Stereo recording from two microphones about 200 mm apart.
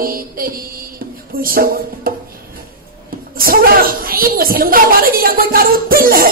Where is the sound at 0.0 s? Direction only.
45° right (ahead or behind).